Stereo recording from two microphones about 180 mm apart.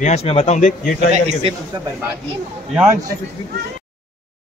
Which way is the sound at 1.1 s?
40° right (ahead or behind).